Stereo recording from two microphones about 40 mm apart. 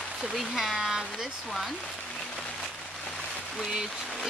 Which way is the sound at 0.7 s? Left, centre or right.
Centre.